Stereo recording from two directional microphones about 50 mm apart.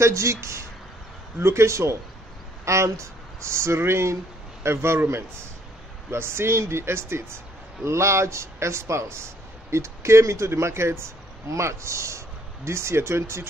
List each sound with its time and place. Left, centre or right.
0.0 s a man's voice: right